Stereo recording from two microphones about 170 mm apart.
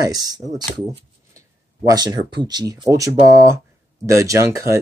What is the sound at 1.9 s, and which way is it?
Speech, 25° right (ahead or behind).